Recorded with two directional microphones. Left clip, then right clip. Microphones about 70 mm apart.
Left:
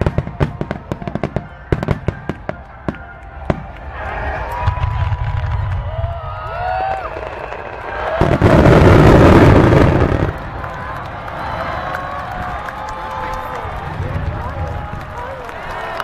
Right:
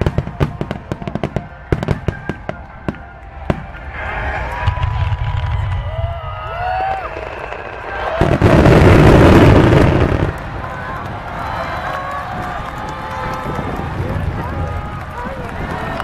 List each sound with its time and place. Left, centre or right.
0.0 s fireworks: centre
3.5 s basketball bounce: centre
4.0 s a sound: right
6.6 s run: centre
8.2 s explosion: centre
11.7 s a sound: right